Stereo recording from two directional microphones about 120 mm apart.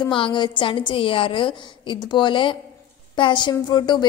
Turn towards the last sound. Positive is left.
turn(degrees=35)  # may be behind; listen again after turning